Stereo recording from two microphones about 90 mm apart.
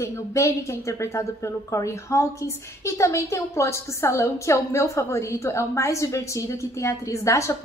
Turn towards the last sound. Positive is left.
turn(degrees=35)  # may be behind; listen again after turning